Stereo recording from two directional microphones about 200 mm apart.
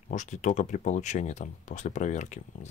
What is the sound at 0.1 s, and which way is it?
Speech, 40° left (ahead or behind).